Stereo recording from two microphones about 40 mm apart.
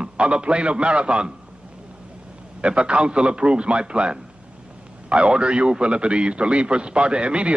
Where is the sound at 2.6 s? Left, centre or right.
Right.